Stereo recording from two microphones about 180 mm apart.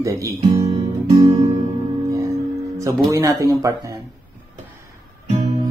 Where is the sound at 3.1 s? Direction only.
20° right (ahead or behind).